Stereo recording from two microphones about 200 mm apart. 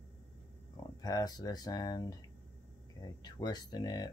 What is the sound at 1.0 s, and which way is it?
Speech, 20° left (ahead or behind).